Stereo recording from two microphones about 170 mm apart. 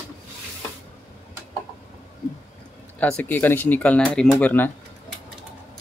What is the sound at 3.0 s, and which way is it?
Speech, 10° left (ahead or behind).